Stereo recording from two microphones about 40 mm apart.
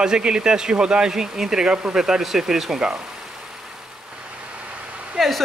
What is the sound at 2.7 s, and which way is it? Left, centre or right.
Speech, right.